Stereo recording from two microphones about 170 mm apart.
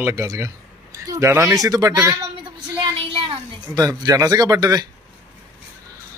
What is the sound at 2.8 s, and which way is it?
Speech, 30° right (ahead or behind).